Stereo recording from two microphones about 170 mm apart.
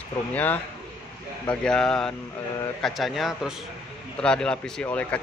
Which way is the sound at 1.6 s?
5° left (ahead or behind).